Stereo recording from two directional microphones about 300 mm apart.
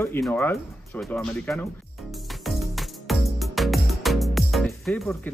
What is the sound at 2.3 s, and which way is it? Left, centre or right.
Music, centre.